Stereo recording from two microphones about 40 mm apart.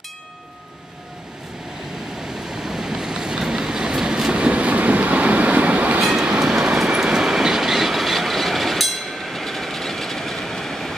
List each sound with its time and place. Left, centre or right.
2.5 s train: centre; by 5.9 s right
5.9 s train: centre